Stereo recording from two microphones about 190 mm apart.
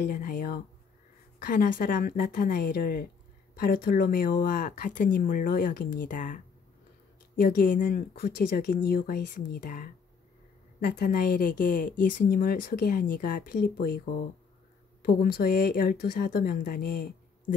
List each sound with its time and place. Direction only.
0.0 s speech: 50° left (ahead or behind)